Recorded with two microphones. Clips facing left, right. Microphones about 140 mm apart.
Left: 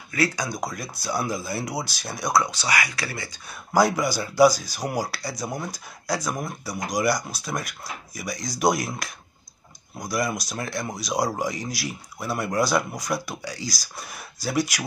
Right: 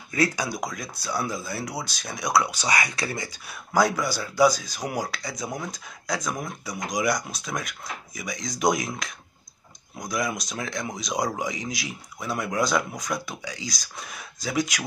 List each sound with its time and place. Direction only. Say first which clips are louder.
0.1 s speech: even; 20° right (ahead or behind)
0.5 s speech: left 1 dB; 5° left (ahead or behind)
2.5 s speech: even; 20° right (ahead or behind)
3.7 s speech: left 2 dB; 10° left (ahead or behind)
9.9 s speech: left 2 dB; 5° left (ahead or behind)